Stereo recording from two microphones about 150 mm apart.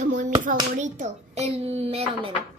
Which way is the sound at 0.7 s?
55° right (ahead or behind).